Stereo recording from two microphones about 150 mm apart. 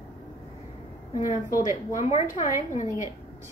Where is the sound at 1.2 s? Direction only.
60° left (ahead or behind).